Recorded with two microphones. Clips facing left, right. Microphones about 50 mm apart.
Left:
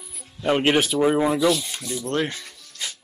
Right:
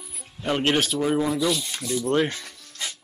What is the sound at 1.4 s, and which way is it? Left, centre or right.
Speech, centre.